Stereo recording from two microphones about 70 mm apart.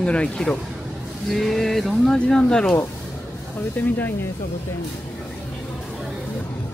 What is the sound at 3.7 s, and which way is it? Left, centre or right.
Speech, left.